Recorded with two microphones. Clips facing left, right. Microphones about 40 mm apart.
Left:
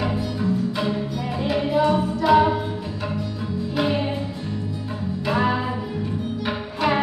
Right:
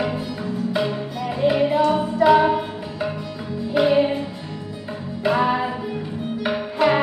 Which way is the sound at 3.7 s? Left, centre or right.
Centre.